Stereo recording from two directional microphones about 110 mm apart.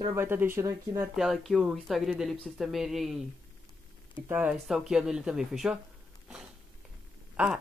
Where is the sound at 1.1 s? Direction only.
Centre (ahead or behind).